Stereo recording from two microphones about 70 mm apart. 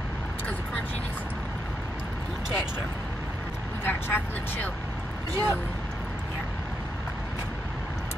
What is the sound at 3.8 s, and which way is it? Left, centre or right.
Speech, left.